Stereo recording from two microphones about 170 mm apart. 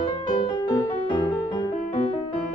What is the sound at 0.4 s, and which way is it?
Music, 25° left (ahead or behind).